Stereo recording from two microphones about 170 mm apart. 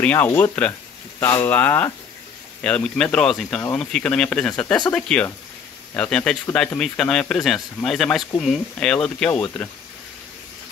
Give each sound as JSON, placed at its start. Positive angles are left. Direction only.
{"t": 0.0, "sound": "speech", "side_deg": 10}